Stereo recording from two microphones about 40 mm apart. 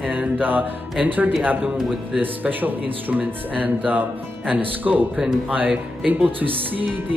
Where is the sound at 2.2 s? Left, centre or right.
Right.